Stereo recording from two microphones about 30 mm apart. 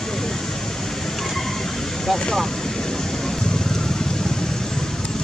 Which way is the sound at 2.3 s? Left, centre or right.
Centre.